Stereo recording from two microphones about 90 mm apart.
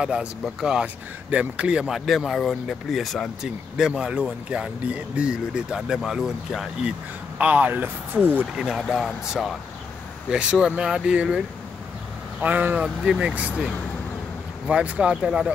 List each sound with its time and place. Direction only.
0.0 s speech: 10° right (ahead or behind)
7.3 s speech: 15° right (ahead or behind)
8.5 s speech: 5° right (ahead or behind)
12.4 s speech: 20° right (ahead or behind)
12.8 s speech: 5° right (ahead or behind)
14.7 s speech: 15° right (ahead or behind)